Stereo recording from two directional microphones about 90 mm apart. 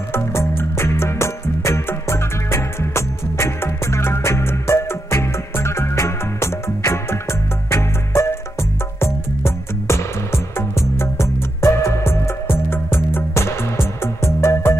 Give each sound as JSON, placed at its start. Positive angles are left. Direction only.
{"t": 0.1, "sound": "music", "side_deg": 30}